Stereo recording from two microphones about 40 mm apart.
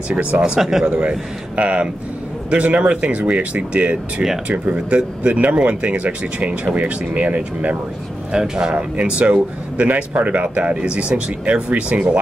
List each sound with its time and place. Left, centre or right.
0.1 s a man's voice: right
0.6 s speech: centre
0.8 s a man's voice: right
8.3 s a man's voice: centre
8.7 s speech: right
11.2 s a man's voice: right
11.9 s speech: right